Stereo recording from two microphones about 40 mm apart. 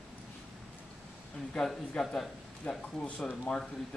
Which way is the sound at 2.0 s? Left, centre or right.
Centre.